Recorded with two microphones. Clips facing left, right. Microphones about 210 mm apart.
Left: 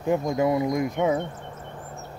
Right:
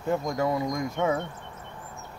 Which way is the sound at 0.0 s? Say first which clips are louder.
Left 4 dB; 15° left (ahead or behind).